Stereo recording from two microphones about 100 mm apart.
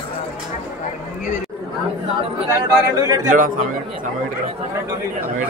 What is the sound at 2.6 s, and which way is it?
Speech, 40° right (ahead or behind).